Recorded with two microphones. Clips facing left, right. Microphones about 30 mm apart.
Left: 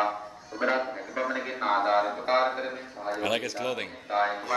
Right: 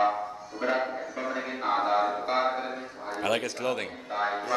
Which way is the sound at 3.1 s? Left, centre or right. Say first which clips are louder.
Even; centre.